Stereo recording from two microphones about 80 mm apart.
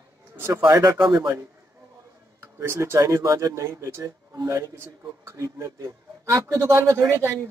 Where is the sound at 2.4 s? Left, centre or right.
Right.